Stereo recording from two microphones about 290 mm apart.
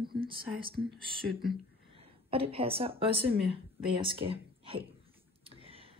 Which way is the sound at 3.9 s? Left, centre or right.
Centre.